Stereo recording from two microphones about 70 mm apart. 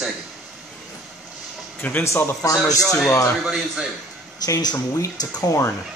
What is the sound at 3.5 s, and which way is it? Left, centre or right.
Speech, centre.